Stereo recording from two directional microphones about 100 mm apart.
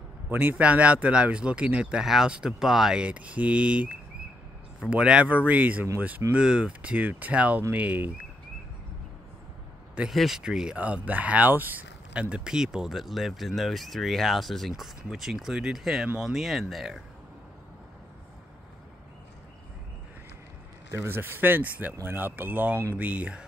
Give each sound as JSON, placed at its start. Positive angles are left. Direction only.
{"t": 0.3, "sound": "speech", "side_deg": -20}
{"t": 10.1, "sound": "speech", "side_deg": -5}
{"t": 20.9, "sound": "speech", "side_deg": -25}